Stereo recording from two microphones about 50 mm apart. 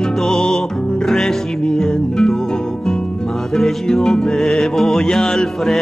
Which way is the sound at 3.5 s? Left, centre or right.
Centre.